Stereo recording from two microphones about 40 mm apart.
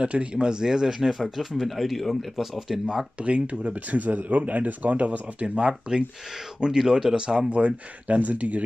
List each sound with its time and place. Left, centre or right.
0.0 s speech: right; by 2.8 s centre
3.2 s speech: right
5.6 s speech: right